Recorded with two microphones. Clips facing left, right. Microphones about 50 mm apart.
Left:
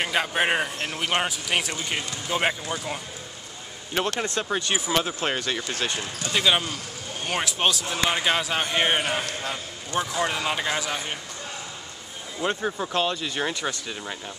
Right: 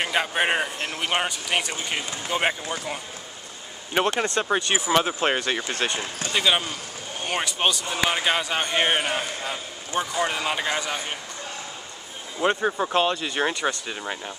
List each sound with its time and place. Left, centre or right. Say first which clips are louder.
0.0 s a man's voice: even; centre
3.9 s speech: right 3 dB; centre
6.3 s a man's voice: even; centre
12.4 s speech: right 4 dB; centre